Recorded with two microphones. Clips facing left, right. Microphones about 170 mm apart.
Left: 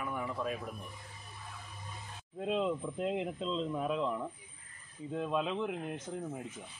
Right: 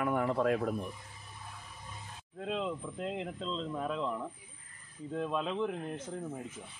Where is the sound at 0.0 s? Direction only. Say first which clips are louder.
Right 7 dB; 70° right (ahead or behind).